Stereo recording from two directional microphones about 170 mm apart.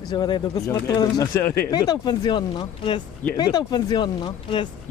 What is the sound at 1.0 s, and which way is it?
Speech, 20° left (ahead or behind).